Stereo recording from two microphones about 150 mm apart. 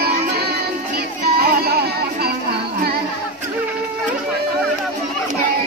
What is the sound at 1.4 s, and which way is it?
Music, 90° right.